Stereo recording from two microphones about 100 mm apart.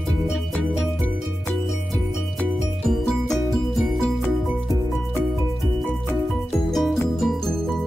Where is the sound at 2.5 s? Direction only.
Centre (ahead or behind).